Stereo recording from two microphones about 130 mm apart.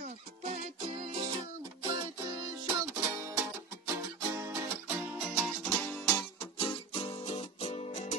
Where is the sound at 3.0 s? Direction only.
20° right (ahead or behind); by 6.0 s 5° left (ahead or behind).